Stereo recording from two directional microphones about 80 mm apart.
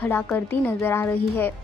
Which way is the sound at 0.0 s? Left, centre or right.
Left.